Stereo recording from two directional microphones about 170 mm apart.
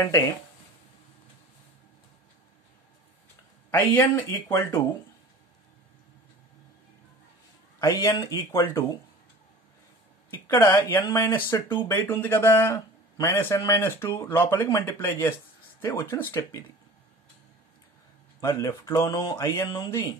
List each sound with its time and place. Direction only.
3.7 s speech: 10° left (ahead or behind)
7.8 s speech: 20° left (ahead or behind)
10.3 s speech: 15° left (ahead or behind)
18.4 s speech: 20° left (ahead or behind)